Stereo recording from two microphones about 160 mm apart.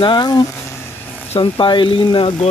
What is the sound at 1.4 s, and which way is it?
Speech, 30° left (ahead or behind).